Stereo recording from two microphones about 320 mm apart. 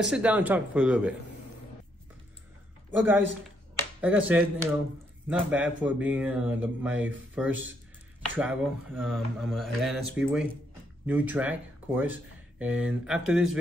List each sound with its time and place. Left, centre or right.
0.0 s speech: centre
2.9 s speech: centre